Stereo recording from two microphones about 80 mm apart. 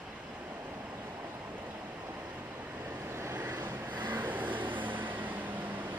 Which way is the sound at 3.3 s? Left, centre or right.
Right.